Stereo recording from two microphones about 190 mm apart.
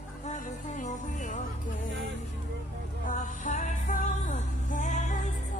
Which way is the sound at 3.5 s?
40° left (ahead or behind).